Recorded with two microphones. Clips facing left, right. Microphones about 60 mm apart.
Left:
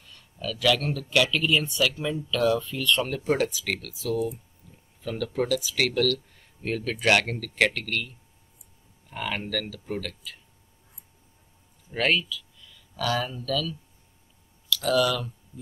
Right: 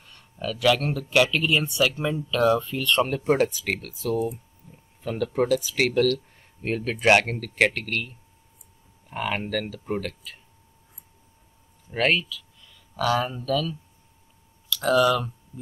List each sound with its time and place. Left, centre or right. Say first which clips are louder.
0.0 s speech: right 3 dB; right
4.6 s a sound: right 5 dB; right
5.0 s speech: right 3 dB; right
9.1 s speech: right 3 dB; right
11.9 s speech: right 2 dB; right
14.8 s speech: right 4 dB; right